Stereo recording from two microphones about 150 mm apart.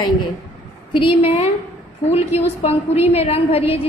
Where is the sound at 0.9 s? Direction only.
35° left (ahead or behind).